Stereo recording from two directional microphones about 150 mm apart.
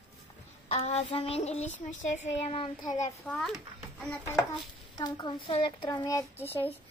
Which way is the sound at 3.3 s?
Centre (ahead or behind).